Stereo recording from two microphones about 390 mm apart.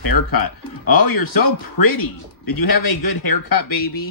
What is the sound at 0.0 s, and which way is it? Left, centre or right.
Speech, left.